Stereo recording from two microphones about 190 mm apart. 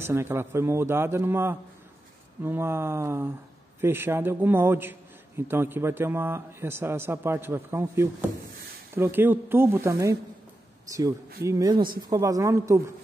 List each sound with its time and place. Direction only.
0.0 s a man's voice: 15° right (ahead or behind)
11.4 s speech: 20° right (ahead or behind)
11.7 s speech: 50° right (ahead or behind)
12.1 s a man's voice: 15° right (ahead or behind)